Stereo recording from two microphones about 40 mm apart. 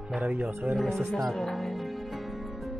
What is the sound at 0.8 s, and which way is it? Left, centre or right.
Speech, centre.